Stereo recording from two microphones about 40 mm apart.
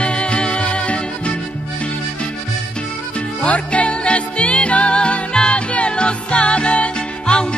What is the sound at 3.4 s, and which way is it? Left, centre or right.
Music, left.